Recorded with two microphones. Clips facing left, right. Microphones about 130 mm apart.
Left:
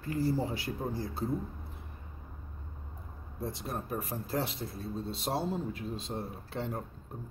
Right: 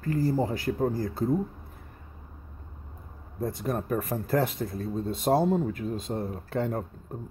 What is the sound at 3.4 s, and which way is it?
Speech, 50° right (ahead or behind).